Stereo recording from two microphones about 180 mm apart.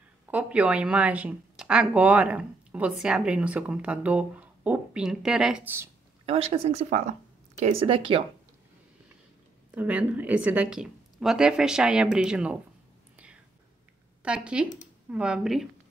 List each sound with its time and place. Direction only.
0.3 s speech: 5° right (ahead or behind)
6.2 s speech: 35° right (ahead or behind)
9.7 s a woman's voice: 5° right (ahead or behind)
13.1 s whispering: 5° right (ahead or behind)
14.2 s speech: 5° right (ahead or behind)